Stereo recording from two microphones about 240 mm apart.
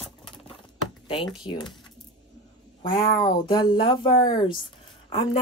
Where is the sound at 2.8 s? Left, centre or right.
Left.